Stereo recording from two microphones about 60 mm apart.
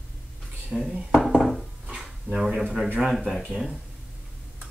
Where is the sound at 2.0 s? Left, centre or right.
Centre.